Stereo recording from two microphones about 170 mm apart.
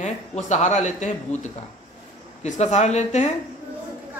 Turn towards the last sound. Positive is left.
turn(degrees=40)  # may be behind; listen again after turning